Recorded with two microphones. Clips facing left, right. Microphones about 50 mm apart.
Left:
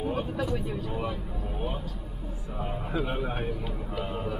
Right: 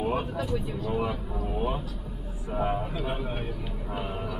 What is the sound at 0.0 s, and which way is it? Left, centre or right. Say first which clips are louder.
Vehicle: right 2 dB; right.